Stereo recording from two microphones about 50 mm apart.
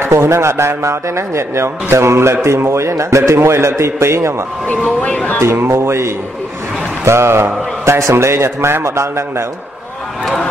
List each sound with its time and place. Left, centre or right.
0.0 s speech: right
3.4 s speech: right
5.0 s speech: left
5.4 s speech: right